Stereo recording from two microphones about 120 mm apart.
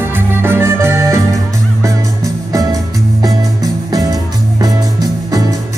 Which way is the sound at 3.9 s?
35° right (ahead or behind).